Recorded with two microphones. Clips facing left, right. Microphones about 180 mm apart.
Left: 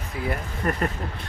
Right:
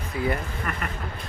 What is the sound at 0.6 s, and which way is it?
Speech, 35° left (ahead or behind).